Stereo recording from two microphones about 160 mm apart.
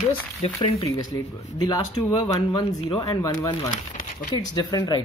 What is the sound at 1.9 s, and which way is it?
Speech, 35° left (ahead or behind).